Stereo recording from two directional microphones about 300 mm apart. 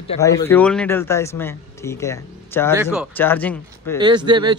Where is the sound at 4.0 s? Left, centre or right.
Centre.